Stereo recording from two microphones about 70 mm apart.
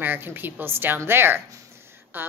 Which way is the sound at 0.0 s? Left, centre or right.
Right.